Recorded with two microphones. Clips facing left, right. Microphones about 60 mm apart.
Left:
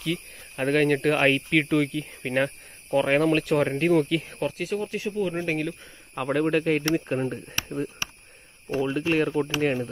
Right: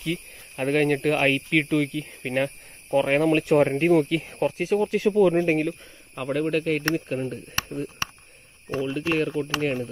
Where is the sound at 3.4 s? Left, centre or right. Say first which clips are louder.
Right 3 dB; centre.